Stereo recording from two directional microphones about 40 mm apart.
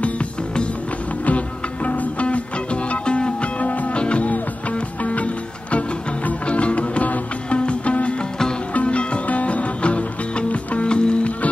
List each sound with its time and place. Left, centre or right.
0.0 s music: left
1.9 s music: left
2.2 s music: left
3.6 s music: left
3.9 s music: left